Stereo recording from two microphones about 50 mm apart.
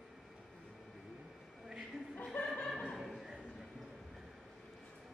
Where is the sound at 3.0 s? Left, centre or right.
Centre.